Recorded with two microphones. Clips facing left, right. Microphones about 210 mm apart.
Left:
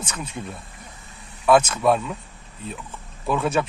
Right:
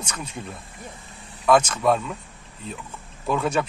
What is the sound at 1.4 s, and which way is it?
Speech, 5° left (ahead or behind).